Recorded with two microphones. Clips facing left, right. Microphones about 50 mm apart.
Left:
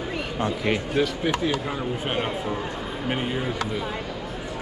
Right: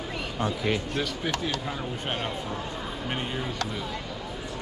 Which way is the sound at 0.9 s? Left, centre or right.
Centre.